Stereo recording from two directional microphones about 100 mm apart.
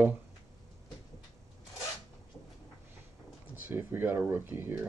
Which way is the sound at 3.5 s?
20° right (ahead or behind).